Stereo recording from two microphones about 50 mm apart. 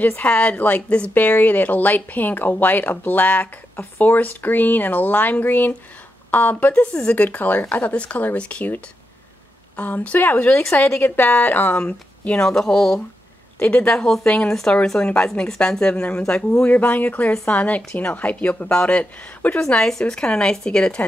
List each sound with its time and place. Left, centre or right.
0.0 s speech: left
0.3 s speech: left
0.6 s speech: left
0.8 s speech: left
1.1 s speech: left
6.7 s speech: left
7.2 s speech: left
9.8 s speech: left
11.8 s speech: left
13.6 s speech: left
15.2 s speech: centre
15.8 s speech: left
19.7 s speech: centre